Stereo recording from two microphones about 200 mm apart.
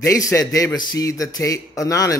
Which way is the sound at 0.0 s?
15° left (ahead or behind).